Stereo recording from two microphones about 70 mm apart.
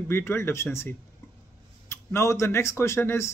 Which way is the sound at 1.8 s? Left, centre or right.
Left.